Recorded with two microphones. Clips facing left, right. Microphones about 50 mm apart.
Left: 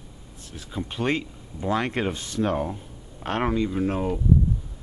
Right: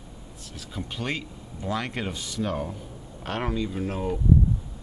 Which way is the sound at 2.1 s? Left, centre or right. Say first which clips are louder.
Left 4 dB; left.